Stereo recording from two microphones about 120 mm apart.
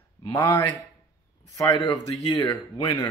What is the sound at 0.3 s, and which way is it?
Speech, 35° left (ahead or behind).